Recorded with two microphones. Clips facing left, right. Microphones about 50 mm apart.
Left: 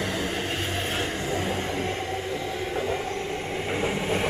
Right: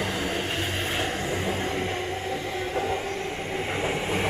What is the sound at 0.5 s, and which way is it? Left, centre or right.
Train, centre.